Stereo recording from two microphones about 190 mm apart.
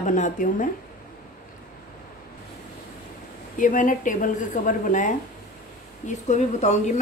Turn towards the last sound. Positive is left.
turn(degrees=40)  # may be behind; listen again after turning